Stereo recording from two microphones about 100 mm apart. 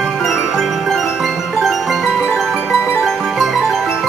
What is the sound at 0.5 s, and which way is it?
Music, centre (ahead or behind).